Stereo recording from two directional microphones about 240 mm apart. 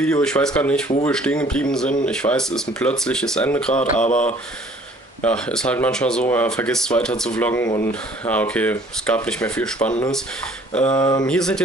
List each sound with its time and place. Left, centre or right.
0.0 s speech: centre
11.0 s a sound: centre
11.2 s speech: centre